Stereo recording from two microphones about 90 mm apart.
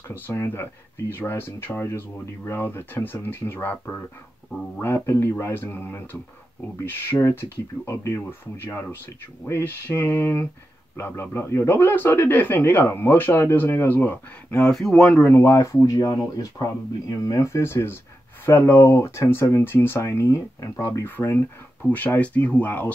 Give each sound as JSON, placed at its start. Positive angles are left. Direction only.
{"t": 0.1, "sound": "speech", "side_deg": 25}
{"t": 14.6, "sound": "speech", "side_deg": 5}
{"t": 15.2, "sound": "speech", "side_deg": 30}
{"t": 21.2, "sound": "speech", "side_deg": 25}